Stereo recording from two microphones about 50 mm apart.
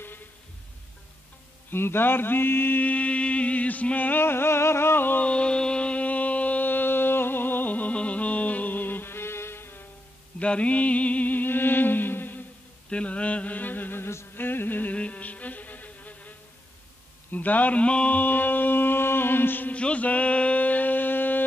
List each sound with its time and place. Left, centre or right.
1.7 s mantra: left
2.8 s mantra: left
4.2 s music: left
5.2 s a sound: left
10.4 s music: left
12.9 s music: left
15.0 s music: left
17.3 s a sound: left
18.1 s mantra: left
19.7 s a sound: left